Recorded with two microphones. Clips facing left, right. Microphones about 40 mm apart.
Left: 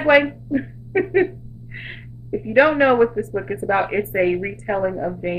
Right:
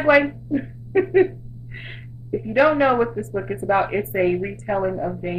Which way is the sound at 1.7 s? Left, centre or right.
Centre.